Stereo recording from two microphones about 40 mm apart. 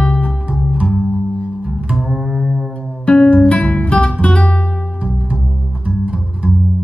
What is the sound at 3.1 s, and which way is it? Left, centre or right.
Music, left.